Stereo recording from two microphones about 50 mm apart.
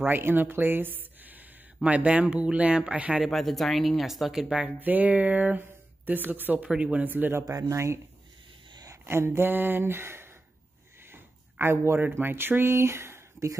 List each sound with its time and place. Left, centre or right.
0.0 s speech: right
3.3 s speech: centre
4.6 s a sound: right
5.6 s speech: right
6.6 s speech: right
7.1 s a sound: right
7.3 s speech: right
9.0 s speech: right
11.1 s a sound: right
12.2 s speech: right